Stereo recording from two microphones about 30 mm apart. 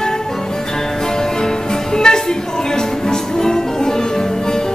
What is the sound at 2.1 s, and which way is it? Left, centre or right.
Music, left.